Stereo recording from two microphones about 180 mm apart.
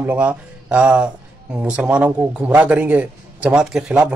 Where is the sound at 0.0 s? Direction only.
10° right (ahead or behind).